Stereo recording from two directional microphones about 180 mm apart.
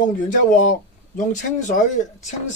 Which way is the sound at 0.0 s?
45° left (ahead or behind).